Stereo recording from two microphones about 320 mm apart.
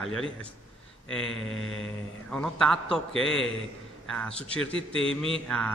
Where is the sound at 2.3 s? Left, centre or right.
Centre.